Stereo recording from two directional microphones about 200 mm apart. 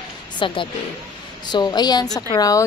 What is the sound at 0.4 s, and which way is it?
Speech, 25° left (ahead or behind).